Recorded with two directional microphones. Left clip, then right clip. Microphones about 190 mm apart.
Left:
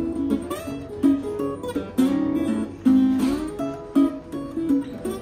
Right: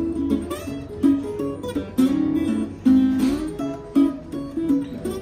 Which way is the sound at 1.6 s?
15° left (ahead or behind).